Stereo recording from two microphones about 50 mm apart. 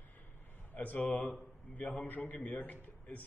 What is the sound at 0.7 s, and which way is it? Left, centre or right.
A man's voice, left.